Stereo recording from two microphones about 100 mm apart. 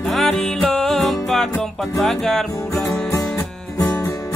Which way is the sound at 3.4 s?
30° left (ahead or behind).